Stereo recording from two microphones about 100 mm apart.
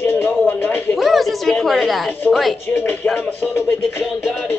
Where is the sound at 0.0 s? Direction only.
20° left (ahead or behind).